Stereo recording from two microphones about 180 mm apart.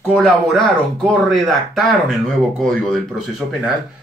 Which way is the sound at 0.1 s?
Centre (ahead or behind).